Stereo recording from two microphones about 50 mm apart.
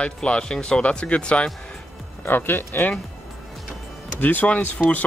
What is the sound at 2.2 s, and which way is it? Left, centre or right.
Speech, left.